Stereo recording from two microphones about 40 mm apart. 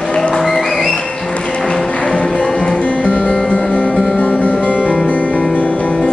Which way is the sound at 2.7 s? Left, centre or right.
Left.